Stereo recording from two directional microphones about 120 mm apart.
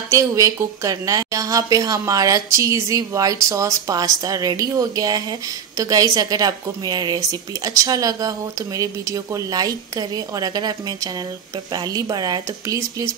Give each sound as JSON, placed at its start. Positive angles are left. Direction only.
{"t": 0.1, "sound": "a woman's voice", "side_deg": -25}